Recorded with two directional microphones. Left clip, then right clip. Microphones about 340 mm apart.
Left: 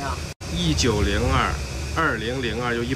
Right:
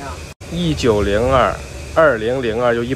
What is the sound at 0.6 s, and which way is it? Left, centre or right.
Speech, centre.